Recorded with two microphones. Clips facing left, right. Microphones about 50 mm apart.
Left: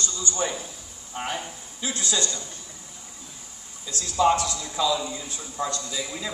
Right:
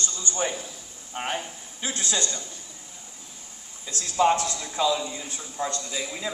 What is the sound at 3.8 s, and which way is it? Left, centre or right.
A man's voice, right.